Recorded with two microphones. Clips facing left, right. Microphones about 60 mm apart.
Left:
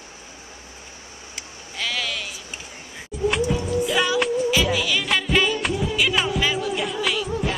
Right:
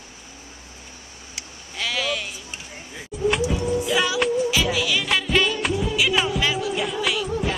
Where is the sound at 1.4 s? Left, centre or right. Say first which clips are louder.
Even; centre.